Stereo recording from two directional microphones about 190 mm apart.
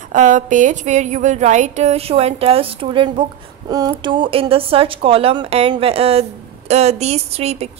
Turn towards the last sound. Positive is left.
turn(degrees=-35)  # may be behind; listen again after turning